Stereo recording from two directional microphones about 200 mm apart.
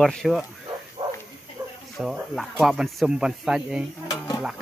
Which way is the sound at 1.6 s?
15° right (ahead or behind).